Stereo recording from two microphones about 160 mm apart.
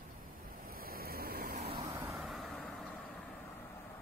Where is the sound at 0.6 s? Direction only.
65° right (ahead or behind).